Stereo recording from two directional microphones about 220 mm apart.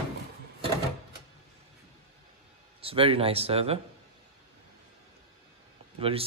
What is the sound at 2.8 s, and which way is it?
Speech, 25° right (ahead or behind).